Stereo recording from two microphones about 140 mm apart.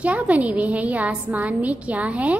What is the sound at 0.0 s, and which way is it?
A woman's voice, 10° right (ahead or behind).